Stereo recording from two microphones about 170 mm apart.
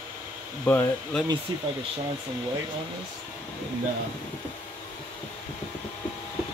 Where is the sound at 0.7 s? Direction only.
10° left (ahead or behind).